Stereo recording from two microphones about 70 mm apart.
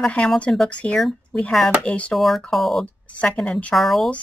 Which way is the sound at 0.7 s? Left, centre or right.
Centre.